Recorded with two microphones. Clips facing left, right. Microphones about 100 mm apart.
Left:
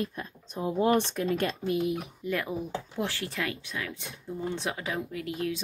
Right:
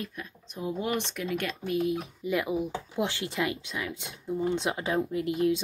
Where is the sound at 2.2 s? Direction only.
10° right (ahead or behind).